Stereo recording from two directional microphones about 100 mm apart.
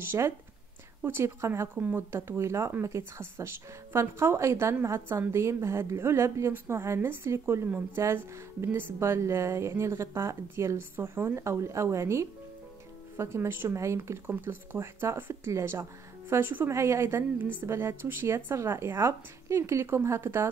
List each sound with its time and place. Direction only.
0.0 s speech: 25° right (ahead or behind)